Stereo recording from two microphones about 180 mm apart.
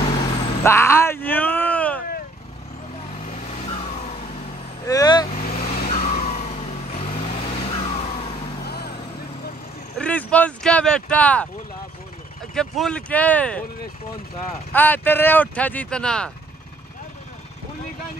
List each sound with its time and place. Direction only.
0.0 s vehicle: 25° left (ahead or behind)
0.7 s groan: 15° left (ahead or behind)
3.3 s vehicle: 35° left (ahead or behind)
4.8 s vehicle: 20° left (ahead or behind)
5.4 s vehicle: 55° left (ahead or behind); by 8.4 s 35° left (ahead or behind)
8.6 s vehicle: 60° left (ahead or behind)
9.9 s a sound: 5° left (ahead or behind)
12.5 s speech: 5° left (ahead or behind)
14.7 s speech: 10° left (ahead or behind)